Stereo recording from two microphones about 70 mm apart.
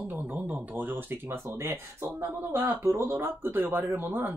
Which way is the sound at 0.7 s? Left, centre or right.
Right.